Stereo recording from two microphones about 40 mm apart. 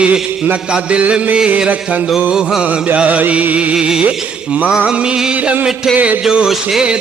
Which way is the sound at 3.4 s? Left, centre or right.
Right.